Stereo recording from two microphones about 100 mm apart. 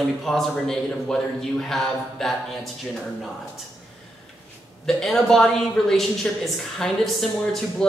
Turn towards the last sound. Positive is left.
turn(degrees=5)  # may be behind; listen again after turning